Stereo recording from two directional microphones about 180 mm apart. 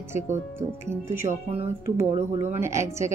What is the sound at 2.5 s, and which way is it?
Speech, 15° right (ahead or behind).